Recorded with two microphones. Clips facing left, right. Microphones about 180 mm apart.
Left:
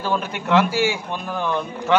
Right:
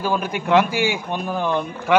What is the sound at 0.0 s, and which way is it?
A man's voice, 10° right (ahead or behind).